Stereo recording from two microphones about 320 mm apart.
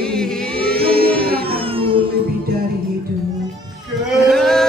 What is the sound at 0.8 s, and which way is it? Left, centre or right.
Music, centre.